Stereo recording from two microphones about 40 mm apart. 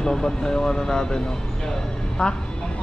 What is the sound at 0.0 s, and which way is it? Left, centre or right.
Speech, centre.